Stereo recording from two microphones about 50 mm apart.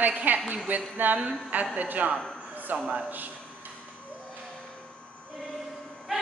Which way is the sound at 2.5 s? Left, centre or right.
Right.